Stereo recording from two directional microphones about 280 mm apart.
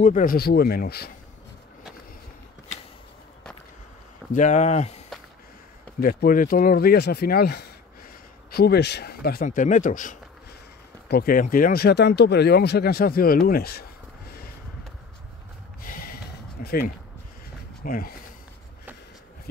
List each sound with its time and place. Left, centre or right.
0.0 s speech: left
4.3 s speech: left
15.8 s a sound: left
16.6 s speech: left